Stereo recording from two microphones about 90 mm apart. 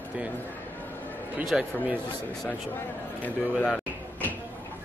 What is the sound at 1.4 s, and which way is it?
Speech, 10° right (ahead or behind).